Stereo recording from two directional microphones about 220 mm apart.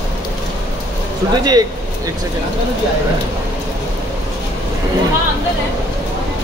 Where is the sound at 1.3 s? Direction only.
20° right (ahead or behind).